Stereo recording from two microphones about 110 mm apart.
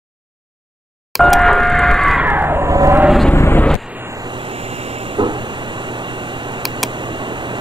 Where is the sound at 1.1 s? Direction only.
Centre (ahead or behind).